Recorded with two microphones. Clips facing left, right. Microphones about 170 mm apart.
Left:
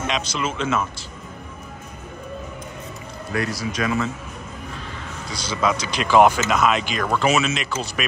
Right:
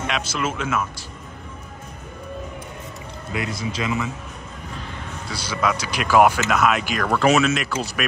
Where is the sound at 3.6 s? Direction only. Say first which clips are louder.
Even; 20° right (ahead or behind).